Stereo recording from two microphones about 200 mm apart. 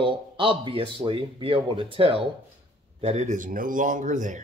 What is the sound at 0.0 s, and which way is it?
Speech, 25° right (ahead or behind).